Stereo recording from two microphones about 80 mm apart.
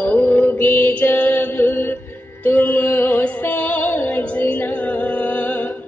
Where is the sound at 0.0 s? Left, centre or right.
Left.